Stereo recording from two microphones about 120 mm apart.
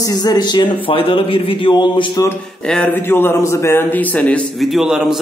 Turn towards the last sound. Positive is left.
turn(degrees=-5)  # may be behind; listen again after turning